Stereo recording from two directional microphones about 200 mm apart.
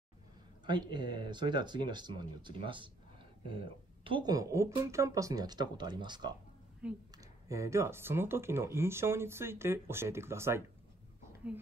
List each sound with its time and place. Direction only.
0.7 s speech: 20° right (ahead or behind)